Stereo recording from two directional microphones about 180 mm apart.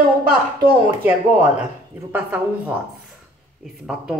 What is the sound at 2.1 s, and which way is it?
A woman's voice, 10° right (ahead or behind).